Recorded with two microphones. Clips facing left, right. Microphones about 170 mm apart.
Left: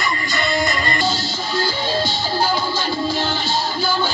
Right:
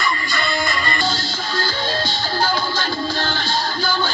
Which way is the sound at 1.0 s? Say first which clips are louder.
Left 2 dB; 10° left (ahead or behind).